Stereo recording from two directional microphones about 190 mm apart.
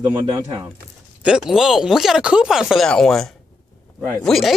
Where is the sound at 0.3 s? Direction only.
20° right (ahead or behind).